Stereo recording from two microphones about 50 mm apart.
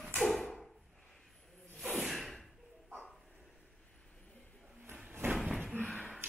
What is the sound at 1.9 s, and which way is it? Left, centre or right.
Whip, centre.